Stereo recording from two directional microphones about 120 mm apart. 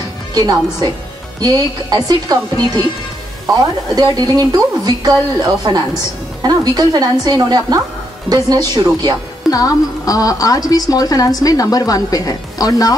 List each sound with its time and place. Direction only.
0.3 s a woman's voice: 30° right (ahead or behind)
3.4 s a woman's voice: 30° right (ahead or behind)
9.5 s a woman's voice: 30° left (ahead or behind)